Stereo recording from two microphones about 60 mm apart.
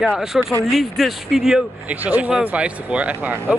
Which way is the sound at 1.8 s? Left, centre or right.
Right.